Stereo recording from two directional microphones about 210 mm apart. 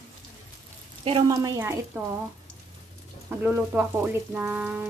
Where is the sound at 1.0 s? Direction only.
20° right (ahead or behind).